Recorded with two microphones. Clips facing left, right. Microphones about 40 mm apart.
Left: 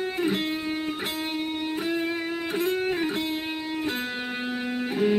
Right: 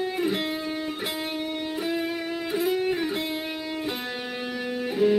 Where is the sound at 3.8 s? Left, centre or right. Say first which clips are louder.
Left 1 dB; centre; by 5.1 s left.